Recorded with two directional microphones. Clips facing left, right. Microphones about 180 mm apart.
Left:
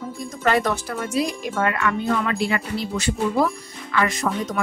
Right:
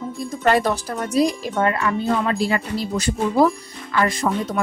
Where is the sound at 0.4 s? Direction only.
35° right (ahead or behind).